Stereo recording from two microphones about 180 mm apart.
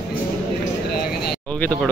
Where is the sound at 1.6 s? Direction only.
5° left (ahead or behind).